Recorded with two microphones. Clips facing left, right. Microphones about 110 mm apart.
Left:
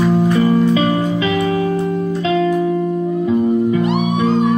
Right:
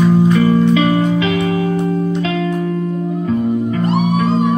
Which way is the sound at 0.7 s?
30° left (ahead or behind).